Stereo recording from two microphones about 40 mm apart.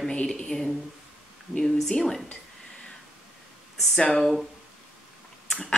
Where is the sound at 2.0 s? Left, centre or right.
Centre.